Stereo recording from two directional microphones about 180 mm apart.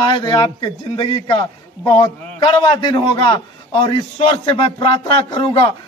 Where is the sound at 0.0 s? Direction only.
25° left (ahead or behind).